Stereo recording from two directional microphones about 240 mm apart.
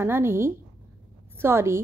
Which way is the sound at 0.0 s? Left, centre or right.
Centre.